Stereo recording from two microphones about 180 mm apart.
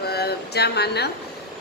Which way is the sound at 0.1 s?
65° left (ahead or behind).